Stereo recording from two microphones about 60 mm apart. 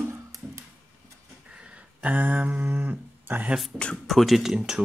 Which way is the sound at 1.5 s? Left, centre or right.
Centre.